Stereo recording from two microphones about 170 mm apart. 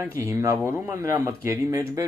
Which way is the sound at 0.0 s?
15° right (ahead or behind).